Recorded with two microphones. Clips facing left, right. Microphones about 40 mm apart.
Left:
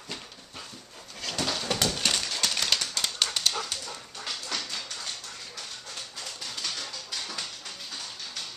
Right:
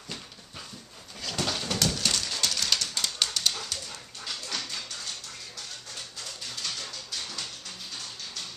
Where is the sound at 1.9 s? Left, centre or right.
Left.